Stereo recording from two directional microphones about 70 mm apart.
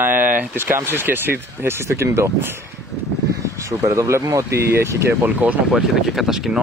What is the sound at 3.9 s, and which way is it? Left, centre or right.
Speech, right.